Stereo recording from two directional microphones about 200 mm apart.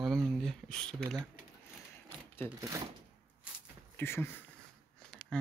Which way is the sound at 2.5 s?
15° right (ahead or behind).